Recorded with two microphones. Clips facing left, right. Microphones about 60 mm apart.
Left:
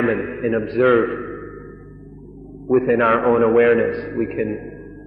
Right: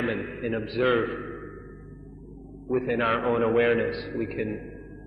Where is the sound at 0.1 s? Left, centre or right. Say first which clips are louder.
Left 9 dB; left.